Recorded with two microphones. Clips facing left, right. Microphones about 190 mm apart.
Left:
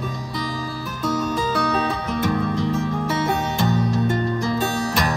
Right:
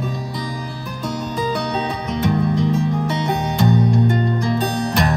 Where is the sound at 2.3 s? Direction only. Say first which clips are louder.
Right 5 dB; 15° right (ahead or behind).